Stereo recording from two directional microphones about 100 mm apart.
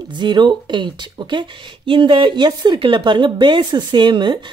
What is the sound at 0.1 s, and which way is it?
Speech, 50° right (ahead or behind).